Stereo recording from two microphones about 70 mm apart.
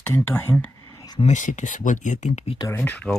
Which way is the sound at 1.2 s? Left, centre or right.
Left.